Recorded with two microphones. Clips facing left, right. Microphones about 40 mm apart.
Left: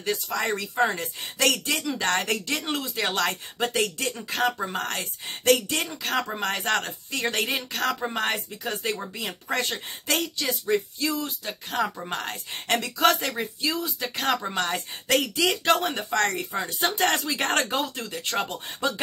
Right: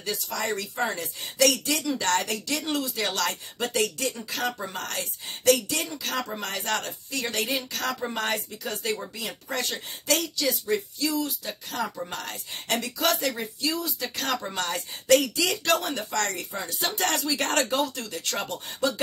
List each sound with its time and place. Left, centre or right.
0.0 s speech: left
1.8 s speech: centre
2.0 s speech: left